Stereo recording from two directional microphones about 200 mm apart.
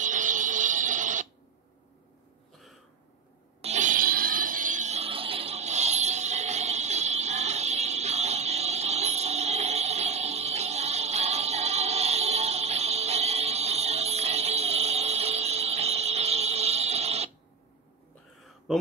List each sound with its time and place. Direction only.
0.0 s music: 40° right (ahead or behind)
3.6 s music: 35° right (ahead or behind)